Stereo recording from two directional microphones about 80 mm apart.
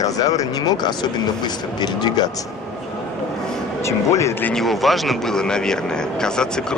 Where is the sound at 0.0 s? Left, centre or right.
Left.